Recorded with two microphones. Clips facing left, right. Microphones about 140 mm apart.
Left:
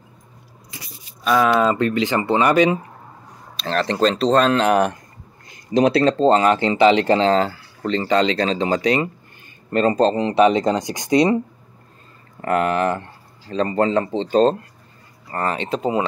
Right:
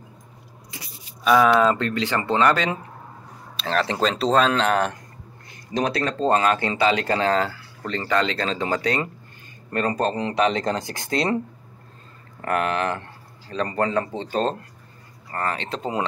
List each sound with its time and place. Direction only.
1.2 s speech: centre (ahead or behind)
3.6 s speech: 5° right (ahead or behind)
4.6 s speech: 15° left (ahead or behind)
5.9 s speech: 30° left (ahead or behind); by 11.3 s 15° left (ahead or behind)
13.5 s speech: 20° left (ahead or behind)